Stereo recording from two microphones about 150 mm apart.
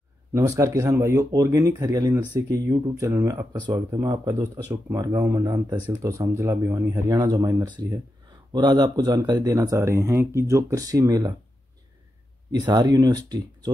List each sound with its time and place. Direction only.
0.3 s speech: 20° right (ahead or behind)
12.4 s speech: 30° right (ahead or behind)